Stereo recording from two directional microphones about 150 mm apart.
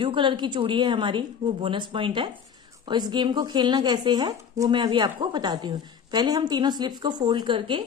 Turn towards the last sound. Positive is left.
turn(degrees=-35)  # may be behind; listen again after turning